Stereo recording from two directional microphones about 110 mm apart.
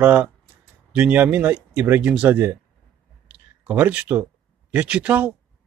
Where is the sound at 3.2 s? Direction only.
15° right (ahead or behind).